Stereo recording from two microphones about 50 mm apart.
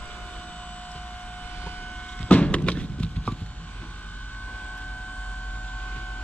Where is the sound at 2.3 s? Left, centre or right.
Left.